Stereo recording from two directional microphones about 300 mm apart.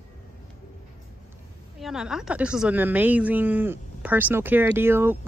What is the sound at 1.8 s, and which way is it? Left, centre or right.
Speech, centre.